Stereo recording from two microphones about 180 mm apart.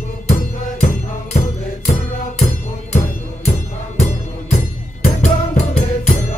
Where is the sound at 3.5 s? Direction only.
40° left (ahead or behind).